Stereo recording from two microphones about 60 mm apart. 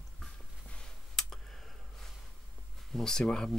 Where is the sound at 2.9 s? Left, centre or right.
Centre.